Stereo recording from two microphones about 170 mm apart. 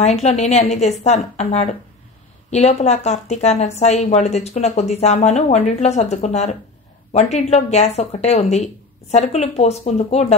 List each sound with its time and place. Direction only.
0.0 s speech: 40° left (ahead or behind)